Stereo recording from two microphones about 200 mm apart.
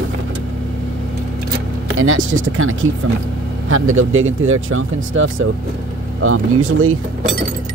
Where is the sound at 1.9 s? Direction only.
90° right.